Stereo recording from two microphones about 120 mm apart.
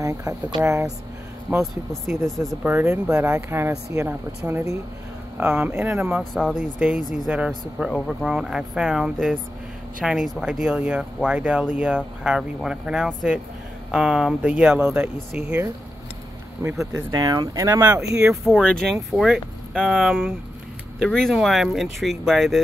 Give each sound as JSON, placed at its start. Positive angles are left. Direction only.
{"t": 0.0, "sound": "speech", "side_deg": -25}
{"t": 1.6, "sound": "speech", "side_deg": 0}
{"t": 2.6, "sound": "speech", "side_deg": -20}
{"t": 6.1, "sound": "speech", "side_deg": 0}
{"t": 6.8, "sound": "speech", "side_deg": -10}
{"t": 16.6, "sound": "speech", "side_deg": -25}
{"t": 18.5, "sound": "speech", "side_deg": 5}